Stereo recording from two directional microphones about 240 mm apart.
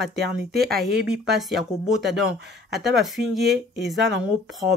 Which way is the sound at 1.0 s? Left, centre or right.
Centre.